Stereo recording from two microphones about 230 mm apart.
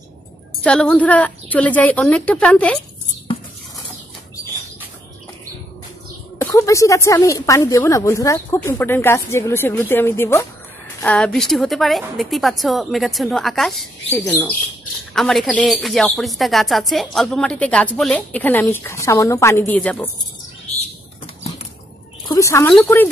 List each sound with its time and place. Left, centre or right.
0.7 s speech: centre
6.3 s speech: centre
22.3 s speech: centre